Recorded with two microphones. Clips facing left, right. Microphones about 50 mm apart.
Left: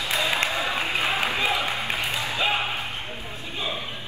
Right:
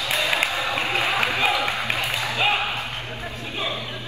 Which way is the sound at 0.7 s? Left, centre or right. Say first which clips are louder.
Right 2 dB; right.